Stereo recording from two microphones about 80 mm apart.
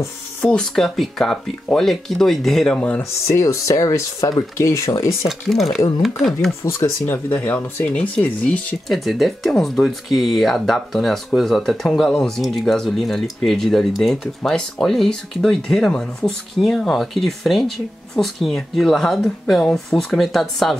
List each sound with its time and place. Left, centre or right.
0.5 s speech: centre
3.0 s speech: left
5.5 s speech: centre
6.6 s speech: left
7.2 s speech: left
8.8 s speech: centre